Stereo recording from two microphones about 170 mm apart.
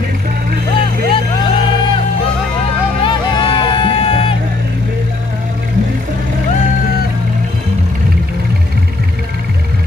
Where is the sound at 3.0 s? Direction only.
30° left (ahead or behind).